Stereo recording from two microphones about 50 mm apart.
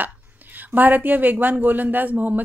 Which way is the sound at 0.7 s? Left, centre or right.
Right.